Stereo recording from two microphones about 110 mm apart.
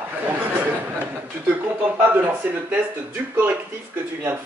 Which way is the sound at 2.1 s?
15° right (ahead or behind).